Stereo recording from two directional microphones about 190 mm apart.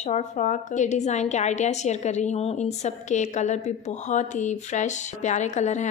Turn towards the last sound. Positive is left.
turn(degrees=40)  # may be behind; listen again after turning